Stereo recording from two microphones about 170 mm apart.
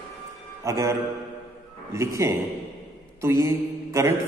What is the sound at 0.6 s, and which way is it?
A man's voice, 20° right (ahead or behind).